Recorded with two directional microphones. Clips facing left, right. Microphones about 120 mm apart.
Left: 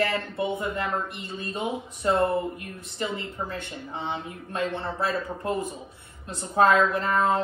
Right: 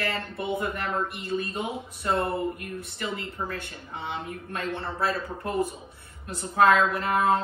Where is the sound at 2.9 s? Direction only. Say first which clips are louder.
Left 3 dB; 25° left (ahead or behind).